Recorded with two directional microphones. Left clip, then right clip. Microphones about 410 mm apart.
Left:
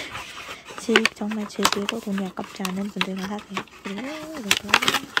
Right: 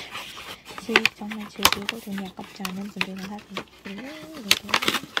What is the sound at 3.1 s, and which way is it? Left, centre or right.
Speech, centre.